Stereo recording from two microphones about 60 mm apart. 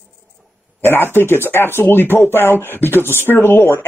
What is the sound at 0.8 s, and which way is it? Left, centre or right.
Speech, left.